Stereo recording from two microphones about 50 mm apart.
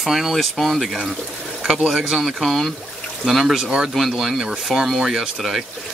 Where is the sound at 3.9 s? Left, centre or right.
Centre.